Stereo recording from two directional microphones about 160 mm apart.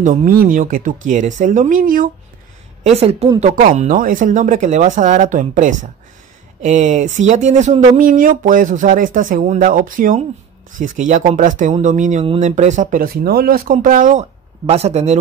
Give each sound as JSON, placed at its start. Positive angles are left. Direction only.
{"t": 0.0, "sound": "speech", "side_deg": -50}
{"t": 2.8, "sound": "a woman's voice", "side_deg": -40}
{"t": 3.5, "sound": "speech", "side_deg": -55}
{"t": 8.0, "sound": "speech", "side_deg": -60}
{"t": 14.7, "sound": "speech", "side_deg": -40}